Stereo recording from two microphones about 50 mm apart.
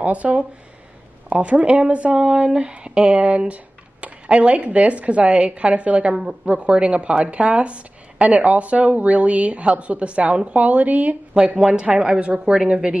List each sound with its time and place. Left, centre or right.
0.0 s a woman's voice: right